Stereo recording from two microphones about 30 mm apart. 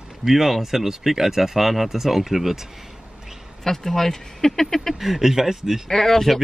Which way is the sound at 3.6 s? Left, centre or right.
Centre.